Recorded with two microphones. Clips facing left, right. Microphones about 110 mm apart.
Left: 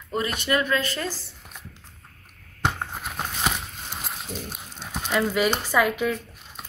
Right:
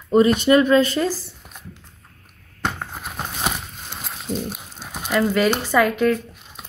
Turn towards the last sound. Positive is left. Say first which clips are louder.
# right 5 dB
turn(degrees=5)  # may be behind; listen again after turning